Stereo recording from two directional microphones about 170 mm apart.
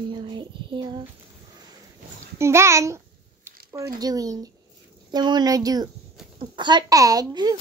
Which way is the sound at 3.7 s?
20° right (ahead or behind).